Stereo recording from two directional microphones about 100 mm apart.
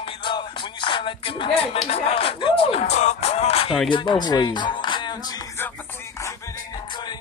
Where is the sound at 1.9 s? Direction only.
80° left.